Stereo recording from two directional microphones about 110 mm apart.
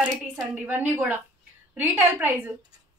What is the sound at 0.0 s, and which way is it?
A woman's voice, 10° right (ahead or behind).